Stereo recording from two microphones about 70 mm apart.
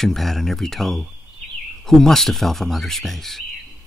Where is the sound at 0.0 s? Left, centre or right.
Centre.